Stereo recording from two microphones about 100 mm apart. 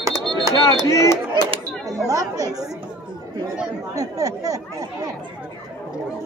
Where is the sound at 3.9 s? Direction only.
35° right (ahead or behind).